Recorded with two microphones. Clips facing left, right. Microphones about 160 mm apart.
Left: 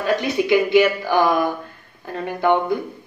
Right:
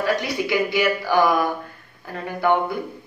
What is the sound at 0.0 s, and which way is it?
Speech, 20° left (ahead or behind).